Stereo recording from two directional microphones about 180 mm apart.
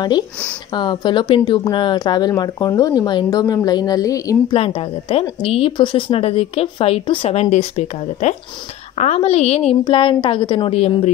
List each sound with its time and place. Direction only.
0.7 s speech: 25° left (ahead or behind)
4.6 s speech: 30° left (ahead or behind)